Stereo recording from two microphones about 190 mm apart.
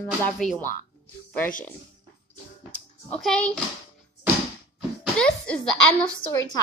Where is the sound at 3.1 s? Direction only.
5° left (ahead or behind).